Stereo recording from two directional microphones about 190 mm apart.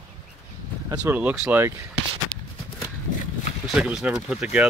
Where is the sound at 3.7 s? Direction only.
5° right (ahead or behind).